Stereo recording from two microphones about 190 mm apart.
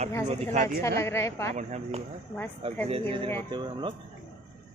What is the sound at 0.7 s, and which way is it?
Speech, 15° left (ahead or behind).